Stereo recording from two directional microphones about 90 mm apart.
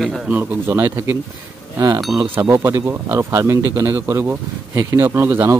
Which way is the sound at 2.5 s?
30° right (ahead or behind).